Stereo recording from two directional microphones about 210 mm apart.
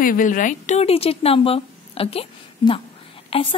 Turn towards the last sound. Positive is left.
turn(degrees=25)  # may be behind; listen again after turning